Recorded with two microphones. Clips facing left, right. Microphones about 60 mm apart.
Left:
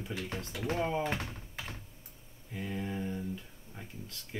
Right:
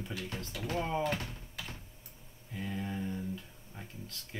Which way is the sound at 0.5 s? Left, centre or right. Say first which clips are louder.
Left 2 dB; left.